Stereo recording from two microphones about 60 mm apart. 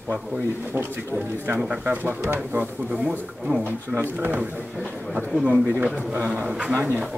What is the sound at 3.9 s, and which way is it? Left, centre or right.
Speech, right.